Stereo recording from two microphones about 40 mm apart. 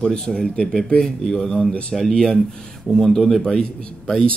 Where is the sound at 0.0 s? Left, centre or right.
Centre.